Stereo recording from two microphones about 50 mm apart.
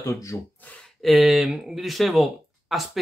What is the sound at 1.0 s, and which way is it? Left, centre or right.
Speech, centre.